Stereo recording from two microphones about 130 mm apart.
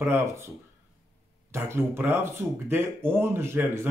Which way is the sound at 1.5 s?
20° right (ahead or behind).